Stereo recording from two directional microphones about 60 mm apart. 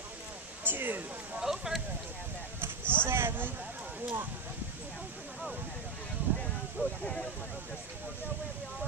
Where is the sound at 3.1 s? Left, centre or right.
Right.